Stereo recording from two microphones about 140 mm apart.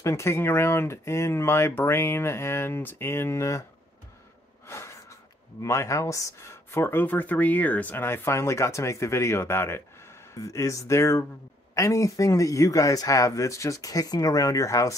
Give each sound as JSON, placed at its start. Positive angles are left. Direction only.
{"t": 0.0, "sound": "speech", "side_deg": 20}
{"t": 4.6, "sound": "snort", "side_deg": 20}
{"t": 5.6, "sound": "speech", "side_deg": 20}